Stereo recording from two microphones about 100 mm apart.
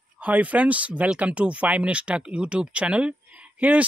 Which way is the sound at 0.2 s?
15° right (ahead or behind).